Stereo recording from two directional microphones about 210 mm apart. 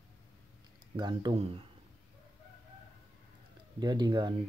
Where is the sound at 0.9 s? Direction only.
20° right (ahead or behind).